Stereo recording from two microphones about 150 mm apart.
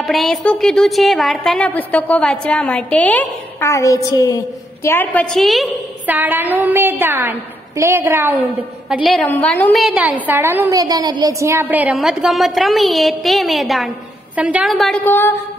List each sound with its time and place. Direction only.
0.0 s a woman's voice: centre (ahead or behind)
6.0 s a woman's voice: 10° right (ahead or behind)
9.0 s a woman's voice: centre (ahead or behind)
9.8 s a woman's voice: 10° right (ahead or behind)
10.8 s a woman's voice: 25° right (ahead or behind); by 15.0 s centre (ahead or behind)
15.0 s a woman's voice: 15° left (ahead or behind)